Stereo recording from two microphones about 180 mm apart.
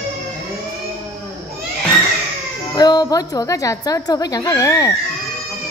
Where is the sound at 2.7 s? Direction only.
20° left (ahead or behind).